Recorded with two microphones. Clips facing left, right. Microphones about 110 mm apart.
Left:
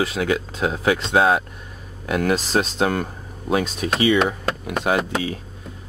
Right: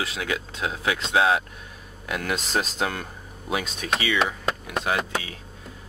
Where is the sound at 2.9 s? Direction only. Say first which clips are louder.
Left 9 dB; 40° left (ahead or behind).